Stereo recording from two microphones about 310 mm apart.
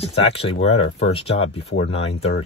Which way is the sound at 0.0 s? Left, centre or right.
Centre.